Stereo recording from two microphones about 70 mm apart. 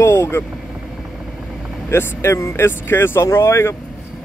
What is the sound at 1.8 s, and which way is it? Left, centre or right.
Speech, left.